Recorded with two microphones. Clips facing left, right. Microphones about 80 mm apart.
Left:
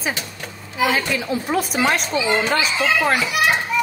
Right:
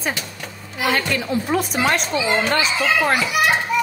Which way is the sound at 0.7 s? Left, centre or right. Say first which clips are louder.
Left 1 dB; centre.